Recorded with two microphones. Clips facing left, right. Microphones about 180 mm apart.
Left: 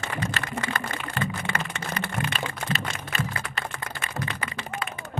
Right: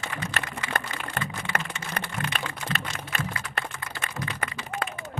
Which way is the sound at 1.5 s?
55° right (ahead or behind).